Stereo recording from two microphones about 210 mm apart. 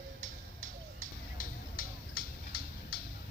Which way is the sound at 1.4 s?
45° left (ahead or behind).